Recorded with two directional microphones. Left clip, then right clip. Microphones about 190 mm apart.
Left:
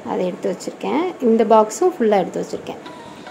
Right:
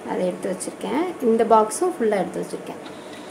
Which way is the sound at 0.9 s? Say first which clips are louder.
Left 3 dB; 25° left (ahead or behind).